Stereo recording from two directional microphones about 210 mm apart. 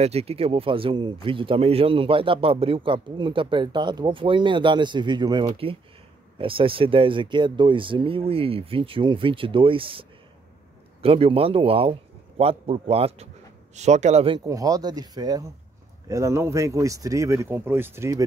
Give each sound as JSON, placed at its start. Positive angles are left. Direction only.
{"t": 0.0, "sound": "speech", "side_deg": -30}